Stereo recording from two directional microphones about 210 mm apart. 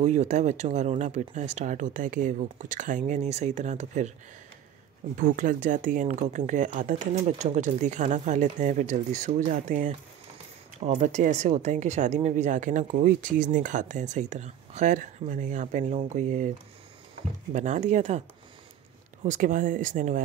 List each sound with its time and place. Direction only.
0.0 s speech: 35° right (ahead or behind)
5.1 s speech: 35° right (ahead or behind)
11.0 s speech: 35° right (ahead or behind)
19.2 s speech: 35° right (ahead or behind)